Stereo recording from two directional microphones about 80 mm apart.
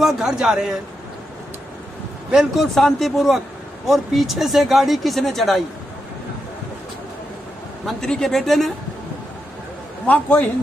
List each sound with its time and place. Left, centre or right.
0.0 s a man's voice: centre
2.3 s a man's voice: centre
7.8 s a man's voice: centre
10.0 s a man's voice: centre